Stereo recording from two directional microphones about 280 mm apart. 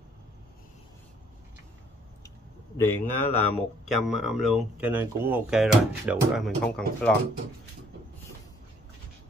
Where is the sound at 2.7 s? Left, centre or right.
Centre.